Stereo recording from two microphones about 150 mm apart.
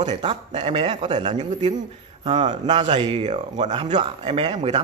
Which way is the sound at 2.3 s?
30° right (ahead or behind).